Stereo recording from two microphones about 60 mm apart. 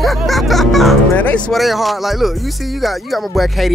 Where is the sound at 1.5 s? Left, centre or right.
Centre.